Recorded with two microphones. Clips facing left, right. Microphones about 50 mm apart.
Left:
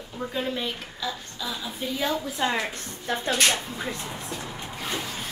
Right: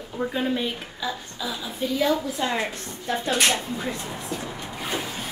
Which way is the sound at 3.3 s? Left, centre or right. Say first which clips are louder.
Right 2 dB; centre.